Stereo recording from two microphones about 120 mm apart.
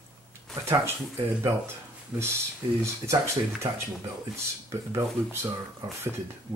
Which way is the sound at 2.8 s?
25° right (ahead or behind).